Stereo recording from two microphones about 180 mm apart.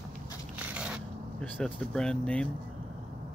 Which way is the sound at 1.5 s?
5° left (ahead or behind).